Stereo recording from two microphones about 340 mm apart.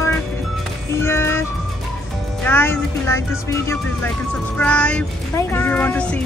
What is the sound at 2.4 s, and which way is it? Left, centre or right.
Speech, centre.